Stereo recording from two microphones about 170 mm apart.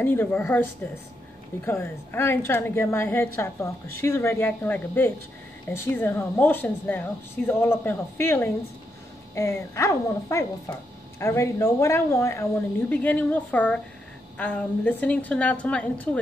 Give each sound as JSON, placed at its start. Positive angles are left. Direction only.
{"t": 0.0, "sound": "a woman's voice", "side_deg": 10}
{"t": 1.7, "sound": "a woman's voice", "side_deg": 15}